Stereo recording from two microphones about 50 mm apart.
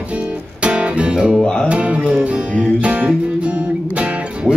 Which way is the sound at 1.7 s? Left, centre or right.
Right.